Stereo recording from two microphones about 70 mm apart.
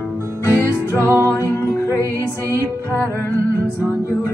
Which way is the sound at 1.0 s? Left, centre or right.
Right.